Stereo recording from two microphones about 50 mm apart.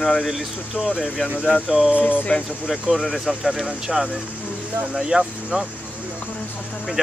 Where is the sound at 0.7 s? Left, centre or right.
Centre.